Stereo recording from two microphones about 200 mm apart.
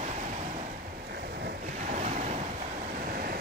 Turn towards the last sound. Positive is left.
turn(degrees=-45)  # may be behind; listen again after turning